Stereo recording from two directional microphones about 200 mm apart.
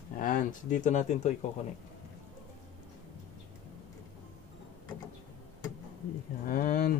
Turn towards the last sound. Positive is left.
turn(degrees=45)  # may be behind; listen again after turning